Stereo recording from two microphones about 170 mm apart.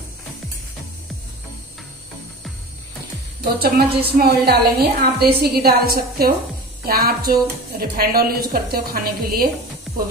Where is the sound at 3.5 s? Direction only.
65° right (ahead or behind).